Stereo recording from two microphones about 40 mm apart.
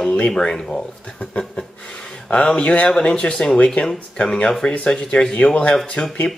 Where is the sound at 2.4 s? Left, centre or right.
Left.